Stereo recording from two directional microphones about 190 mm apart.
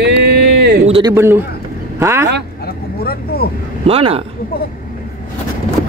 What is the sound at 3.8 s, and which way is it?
Speech, 30° right (ahead or behind).